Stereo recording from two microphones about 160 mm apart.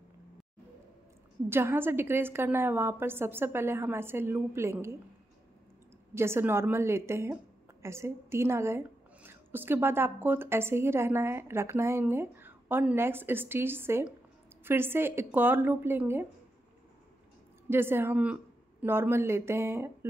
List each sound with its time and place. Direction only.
1.5 s a woman's voice: 15° right (ahead or behind)
6.1 s a woman's voice: 15° right (ahead or behind)
17.6 s a woman's voice: 15° right (ahead or behind)